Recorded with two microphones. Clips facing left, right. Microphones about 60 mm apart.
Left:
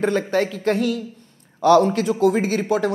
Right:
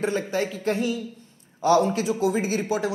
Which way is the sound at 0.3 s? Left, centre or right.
Left.